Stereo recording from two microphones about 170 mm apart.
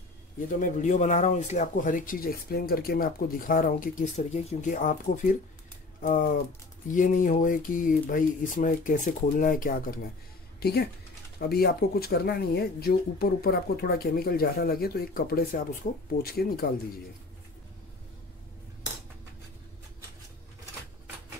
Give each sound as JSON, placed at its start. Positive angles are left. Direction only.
{"t": 0.6, "sound": "speech", "side_deg": 50}
{"t": 10.6, "sound": "speech", "side_deg": 65}